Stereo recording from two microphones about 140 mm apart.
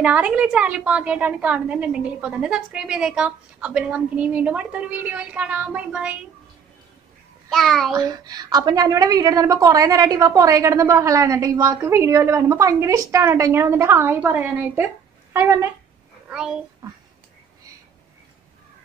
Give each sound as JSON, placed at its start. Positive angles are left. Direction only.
{"t": 0.0, "sound": "a woman's voice", "side_deg": -10}
{"t": 7.4, "sound": "a child's voice", "side_deg": 0}
{"t": 7.9, "sound": "a woman's voice", "side_deg": -25}
{"t": 16.3, "sound": "a child's voice", "side_deg": -5}